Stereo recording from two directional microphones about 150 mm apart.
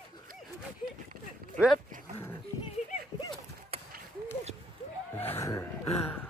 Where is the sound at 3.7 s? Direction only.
40° right (ahead or behind).